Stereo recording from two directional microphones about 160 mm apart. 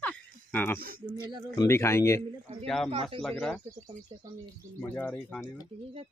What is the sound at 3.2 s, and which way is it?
Speech, 5° left (ahead or behind).